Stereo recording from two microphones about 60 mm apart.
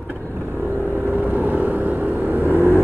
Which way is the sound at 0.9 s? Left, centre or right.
Right.